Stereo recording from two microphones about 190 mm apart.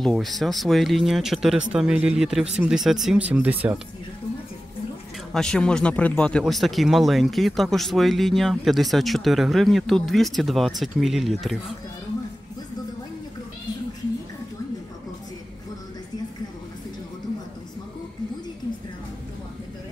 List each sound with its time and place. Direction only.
0.0 s speech: centre (ahead or behind)
5.3 s speech: 5° left (ahead or behind)